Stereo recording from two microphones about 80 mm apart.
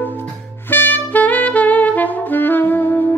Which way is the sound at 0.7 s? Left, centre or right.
Left.